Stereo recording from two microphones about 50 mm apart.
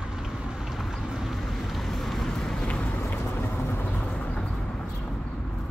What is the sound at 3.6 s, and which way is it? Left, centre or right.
Vehicle, left.